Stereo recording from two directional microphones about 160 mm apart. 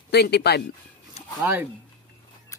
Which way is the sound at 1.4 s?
10° right (ahead or behind).